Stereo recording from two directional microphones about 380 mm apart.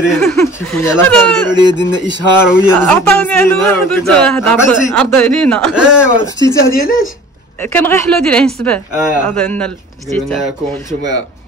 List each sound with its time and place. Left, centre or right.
0.0 s speech: centre
1.5 s speech: centre
6.7 s speech: left
7.6 s speech: centre